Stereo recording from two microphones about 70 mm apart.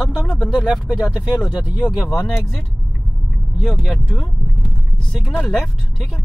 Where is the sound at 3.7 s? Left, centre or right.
Centre.